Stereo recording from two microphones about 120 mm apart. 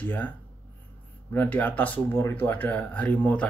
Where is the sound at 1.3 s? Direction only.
15° left (ahead or behind).